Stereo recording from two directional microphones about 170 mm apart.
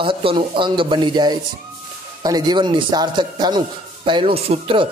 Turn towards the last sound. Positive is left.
turn(degrees=-30)  # may be behind; listen again after turning